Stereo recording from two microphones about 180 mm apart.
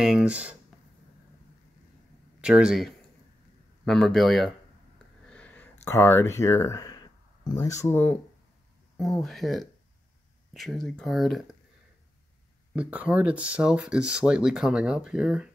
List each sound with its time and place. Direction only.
0.0 s speech: 5° right (ahead or behind)
2.4 s speech: 5° right (ahead or behind)
5.3 s a sound: 5° left (ahead or behind)
5.9 s speech: 15° left (ahead or behind)
12.7 s speech: 5° right (ahead or behind)